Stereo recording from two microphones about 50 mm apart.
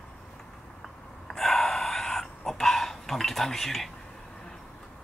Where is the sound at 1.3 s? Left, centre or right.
Centre.